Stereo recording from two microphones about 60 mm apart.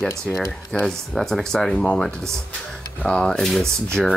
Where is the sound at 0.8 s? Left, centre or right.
Centre.